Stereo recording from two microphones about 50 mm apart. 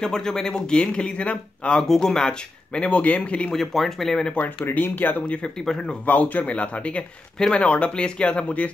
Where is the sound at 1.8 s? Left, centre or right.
Centre.